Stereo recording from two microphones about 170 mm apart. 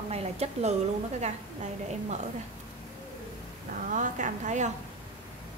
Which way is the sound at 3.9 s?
45° right (ahead or behind).